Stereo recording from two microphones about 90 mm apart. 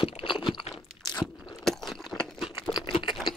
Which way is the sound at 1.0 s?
50° left (ahead or behind).